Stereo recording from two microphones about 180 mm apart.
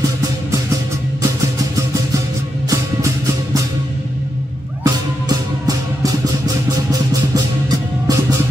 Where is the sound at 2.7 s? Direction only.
15° right (ahead or behind).